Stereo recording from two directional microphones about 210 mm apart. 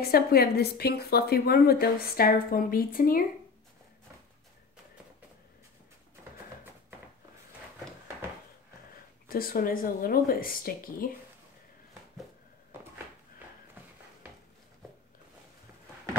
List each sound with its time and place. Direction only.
0.0 s a woman's voice: 45° left (ahead or behind)
9.3 s a woman's voice: 45° left (ahead or behind)